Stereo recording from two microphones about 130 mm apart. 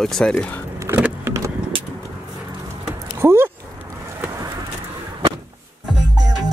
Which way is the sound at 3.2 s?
20° right (ahead or behind).